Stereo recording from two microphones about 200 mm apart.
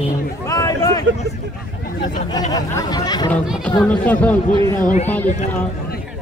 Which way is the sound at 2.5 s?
20° left (ahead or behind).